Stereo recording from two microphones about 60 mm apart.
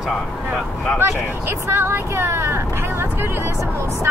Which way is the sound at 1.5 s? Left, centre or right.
Right.